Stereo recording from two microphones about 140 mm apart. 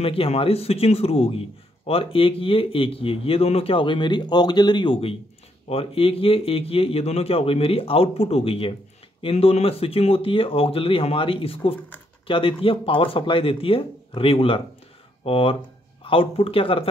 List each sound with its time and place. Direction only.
0.0 s speech: 40° left (ahead or behind)